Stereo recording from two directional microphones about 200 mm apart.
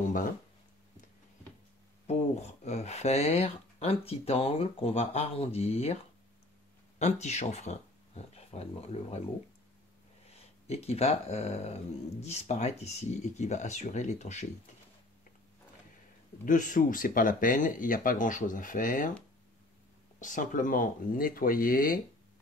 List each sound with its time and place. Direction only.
0.0 s a sound: 40° left (ahead or behind)
2.0 s speech: 30° left (ahead or behind)
7.0 s speech: 35° left (ahead or behind)
10.3 s speech: 30° left (ahead or behind)
16.4 s speech: 40° left (ahead or behind)
20.2 s speech: 40° left (ahead or behind)